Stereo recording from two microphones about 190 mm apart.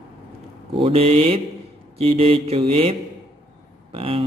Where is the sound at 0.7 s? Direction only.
30° right (ahead or behind).